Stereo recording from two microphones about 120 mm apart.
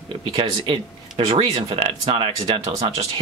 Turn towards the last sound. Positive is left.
turn(degrees=-60)  # may be behind; listen again after turning